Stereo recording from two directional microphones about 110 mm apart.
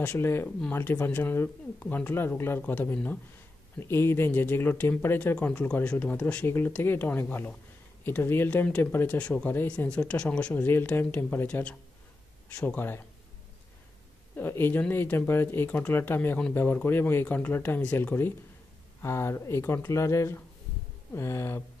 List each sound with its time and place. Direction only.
0.0 s speech: 20° left (ahead or behind)
14.3 s speech: 20° left (ahead or behind)